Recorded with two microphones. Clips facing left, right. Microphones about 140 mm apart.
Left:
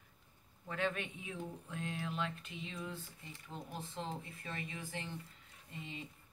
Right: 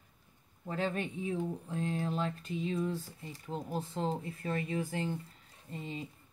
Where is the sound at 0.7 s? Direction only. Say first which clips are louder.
Right 4 dB; 35° right (ahead or behind).